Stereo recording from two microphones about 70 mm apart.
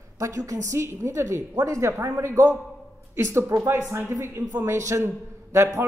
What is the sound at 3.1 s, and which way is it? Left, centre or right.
A man's voice, right.